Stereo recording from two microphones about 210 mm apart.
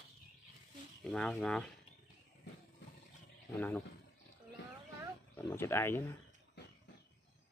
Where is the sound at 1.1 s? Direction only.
5° left (ahead or behind).